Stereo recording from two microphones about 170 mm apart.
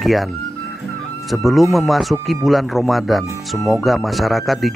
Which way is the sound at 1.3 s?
Centre (ahead or behind).